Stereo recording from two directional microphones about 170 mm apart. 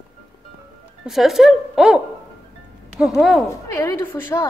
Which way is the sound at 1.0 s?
Centre (ahead or behind).